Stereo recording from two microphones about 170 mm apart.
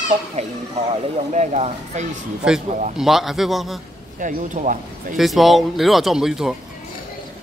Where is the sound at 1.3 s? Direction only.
45° right (ahead or behind).